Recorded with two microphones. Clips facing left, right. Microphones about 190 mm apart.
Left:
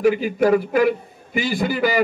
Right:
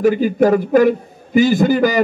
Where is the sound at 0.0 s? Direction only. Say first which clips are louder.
Right 4 dB; 45° right (ahead or behind).